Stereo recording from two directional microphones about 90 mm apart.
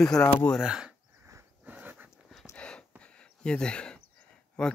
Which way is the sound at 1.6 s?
15° right (ahead or behind).